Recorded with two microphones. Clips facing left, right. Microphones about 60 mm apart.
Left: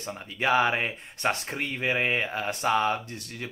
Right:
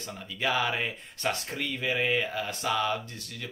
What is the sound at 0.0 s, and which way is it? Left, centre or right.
Speech, left.